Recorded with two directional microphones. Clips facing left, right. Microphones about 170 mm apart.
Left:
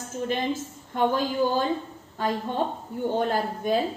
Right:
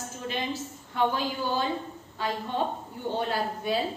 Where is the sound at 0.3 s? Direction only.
50° left (ahead or behind).